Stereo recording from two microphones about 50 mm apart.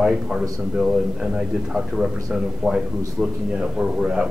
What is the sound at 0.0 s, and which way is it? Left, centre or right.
Speech, centre.